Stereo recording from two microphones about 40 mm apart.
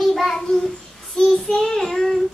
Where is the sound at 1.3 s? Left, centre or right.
Centre.